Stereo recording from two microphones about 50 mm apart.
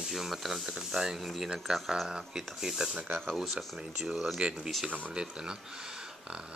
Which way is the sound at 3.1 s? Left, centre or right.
Centre.